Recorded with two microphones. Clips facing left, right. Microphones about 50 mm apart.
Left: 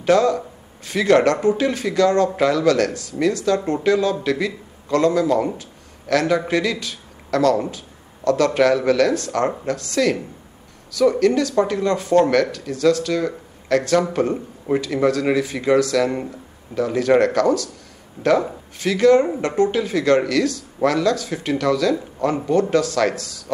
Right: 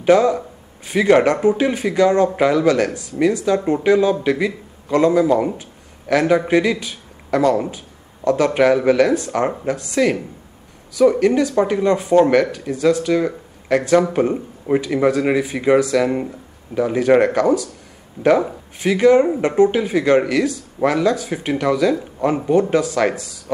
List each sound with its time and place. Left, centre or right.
0.0 s speech: centre